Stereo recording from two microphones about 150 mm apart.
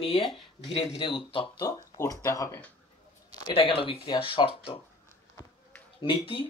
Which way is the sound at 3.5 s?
35° left (ahead or behind).